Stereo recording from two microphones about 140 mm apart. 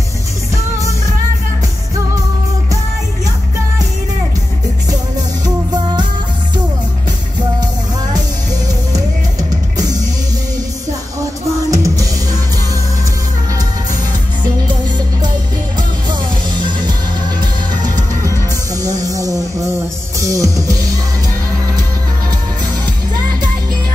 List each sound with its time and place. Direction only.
5.4 s music: 30° right (ahead or behind)
8.6 s music: 25° right (ahead or behind)
11.7 s music: 25° right (ahead or behind)
17.9 s music: 25° right (ahead or behind)